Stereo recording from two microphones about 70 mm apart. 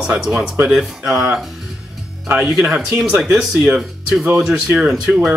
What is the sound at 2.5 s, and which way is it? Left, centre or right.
Speech, centre.